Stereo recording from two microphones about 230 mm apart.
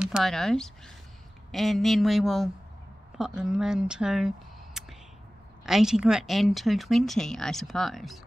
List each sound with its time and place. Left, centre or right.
0.0 s speech: centre
4.7 s a sound: centre
5.7 s speech: centre